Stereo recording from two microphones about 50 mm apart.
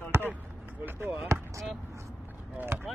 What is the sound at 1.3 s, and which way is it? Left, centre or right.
Speech, right.